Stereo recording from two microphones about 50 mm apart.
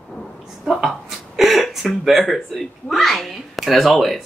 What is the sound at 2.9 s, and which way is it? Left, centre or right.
Speech, centre.